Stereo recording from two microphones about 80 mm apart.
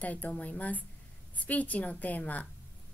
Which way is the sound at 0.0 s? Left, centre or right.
Centre.